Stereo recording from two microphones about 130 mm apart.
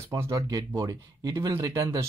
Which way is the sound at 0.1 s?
25° right (ahead or behind).